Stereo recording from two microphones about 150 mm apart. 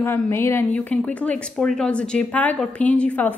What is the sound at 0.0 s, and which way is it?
A woman's voice, 15° left (ahead or behind).